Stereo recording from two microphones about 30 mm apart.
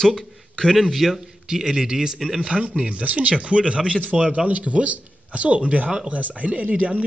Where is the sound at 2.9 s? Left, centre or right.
Right.